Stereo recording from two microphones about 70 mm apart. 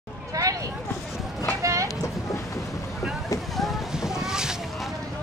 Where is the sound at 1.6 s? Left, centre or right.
Right.